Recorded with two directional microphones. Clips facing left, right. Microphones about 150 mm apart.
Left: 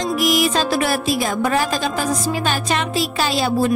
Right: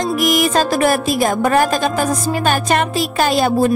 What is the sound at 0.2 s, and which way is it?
Speech, 50° right (ahead or behind).